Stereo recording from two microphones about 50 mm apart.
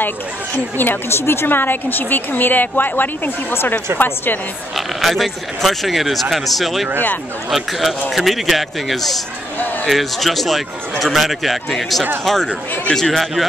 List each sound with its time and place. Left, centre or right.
0.7 s a woman's voice: left
4.7 s a man's voice: centre